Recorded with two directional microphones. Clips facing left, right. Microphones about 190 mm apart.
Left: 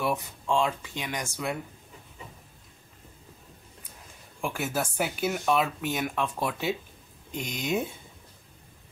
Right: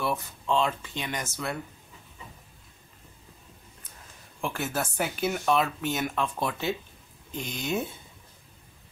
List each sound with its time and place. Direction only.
0.0 s speech: 10° left (ahead or behind)
4.4 s speech: 10° left (ahead or behind)